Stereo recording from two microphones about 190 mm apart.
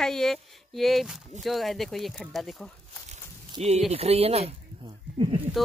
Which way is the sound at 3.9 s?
30° right (ahead or behind).